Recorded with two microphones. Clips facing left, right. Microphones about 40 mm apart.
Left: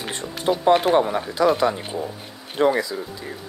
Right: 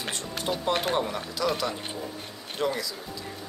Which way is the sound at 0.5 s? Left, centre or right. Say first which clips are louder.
Left 10 dB; left.